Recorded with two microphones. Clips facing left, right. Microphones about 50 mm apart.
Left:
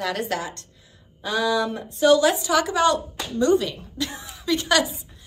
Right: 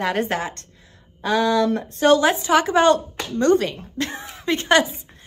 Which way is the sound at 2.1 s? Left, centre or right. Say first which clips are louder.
Right 3 dB; right.